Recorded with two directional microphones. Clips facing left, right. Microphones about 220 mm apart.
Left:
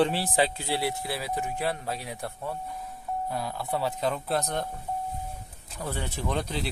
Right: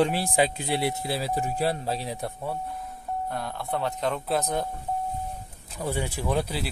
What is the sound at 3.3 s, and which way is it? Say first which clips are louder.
Speech: left 1 dB; 5° left (ahead or behind).